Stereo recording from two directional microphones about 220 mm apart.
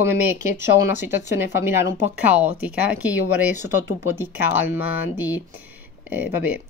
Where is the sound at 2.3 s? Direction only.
5° right (ahead or behind).